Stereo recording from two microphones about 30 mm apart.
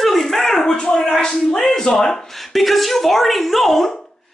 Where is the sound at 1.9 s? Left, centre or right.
Left.